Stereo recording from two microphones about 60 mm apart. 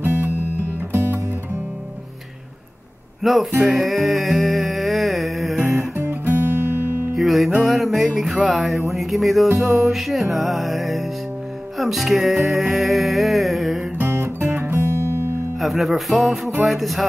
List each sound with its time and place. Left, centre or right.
0.0 s music: right
3.2 s speech: centre
3.6 s a sound: centre
5.9 s guitar: right
7.2 s music: centre
13.9 s guitar: right
15.6 s music: centre